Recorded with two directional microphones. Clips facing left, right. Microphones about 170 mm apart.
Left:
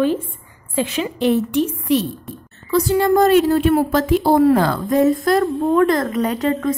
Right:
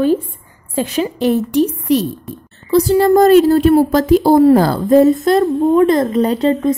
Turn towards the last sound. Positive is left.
turn(degrees=-30)  # may be behind; listen again after turning